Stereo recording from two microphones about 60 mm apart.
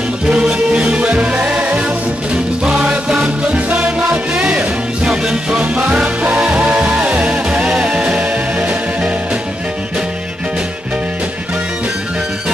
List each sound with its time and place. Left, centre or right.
0.3 s music: centre